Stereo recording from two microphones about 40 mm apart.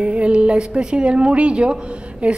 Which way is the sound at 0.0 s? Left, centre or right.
Right.